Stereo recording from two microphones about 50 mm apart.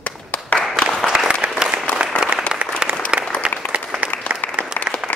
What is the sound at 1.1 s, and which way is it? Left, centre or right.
Applause, centre.